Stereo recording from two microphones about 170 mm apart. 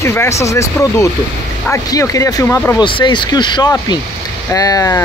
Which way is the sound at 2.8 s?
30° left (ahead or behind).